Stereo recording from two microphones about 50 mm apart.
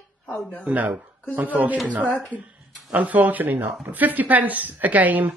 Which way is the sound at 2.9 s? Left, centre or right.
Right.